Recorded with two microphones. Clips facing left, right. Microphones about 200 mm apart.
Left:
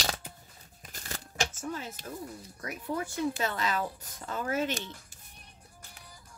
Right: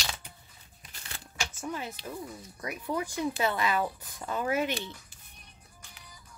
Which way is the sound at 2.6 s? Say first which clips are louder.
Right 2 dB; 15° right (ahead or behind).